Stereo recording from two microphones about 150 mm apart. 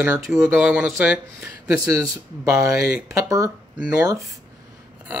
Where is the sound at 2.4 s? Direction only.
20° right (ahead or behind).